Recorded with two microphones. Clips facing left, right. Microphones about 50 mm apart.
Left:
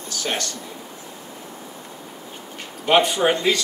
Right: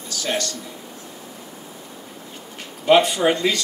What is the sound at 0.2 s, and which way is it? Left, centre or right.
Speech, left.